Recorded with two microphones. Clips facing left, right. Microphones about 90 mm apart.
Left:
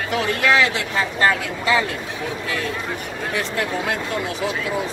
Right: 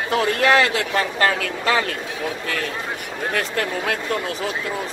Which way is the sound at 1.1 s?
60° right (ahead or behind).